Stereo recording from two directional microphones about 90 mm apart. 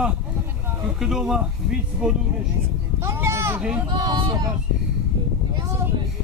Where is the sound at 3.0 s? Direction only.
30° right (ahead or behind).